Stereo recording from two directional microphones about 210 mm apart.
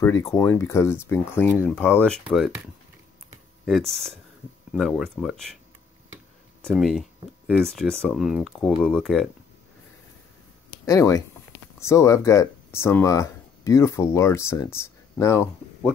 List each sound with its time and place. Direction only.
0.0 s speech: 15° left (ahead or behind)
3.6 s speech: centre (ahead or behind)
6.6 s speech: centre (ahead or behind)
10.9 s speech: 15° left (ahead or behind)